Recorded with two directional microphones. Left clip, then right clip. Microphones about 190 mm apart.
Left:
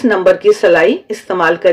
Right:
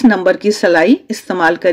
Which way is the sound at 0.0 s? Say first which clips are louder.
Left 2 dB; 45° right (ahead or behind).